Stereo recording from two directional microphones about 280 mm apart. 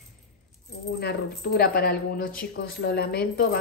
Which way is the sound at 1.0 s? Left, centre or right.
Left.